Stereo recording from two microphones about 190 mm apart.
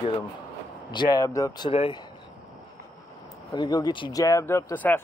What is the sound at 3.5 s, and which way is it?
Speech, 20° left (ahead or behind).